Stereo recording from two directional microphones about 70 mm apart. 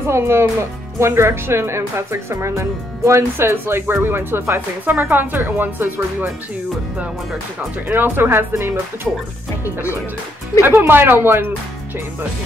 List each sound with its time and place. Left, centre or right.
0.1 s speech: right
7.9 s speech: right
10.6 s speech: right